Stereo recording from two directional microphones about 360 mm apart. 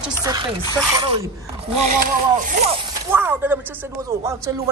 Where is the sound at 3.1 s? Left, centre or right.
Centre.